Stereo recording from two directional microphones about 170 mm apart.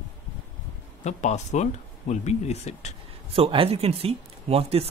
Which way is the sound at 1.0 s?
45° left (ahead or behind).